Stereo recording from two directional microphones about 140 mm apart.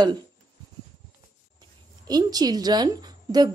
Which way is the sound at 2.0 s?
30° right (ahead or behind).